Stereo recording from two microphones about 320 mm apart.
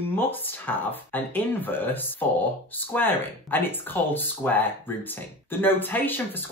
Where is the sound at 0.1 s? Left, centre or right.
Centre.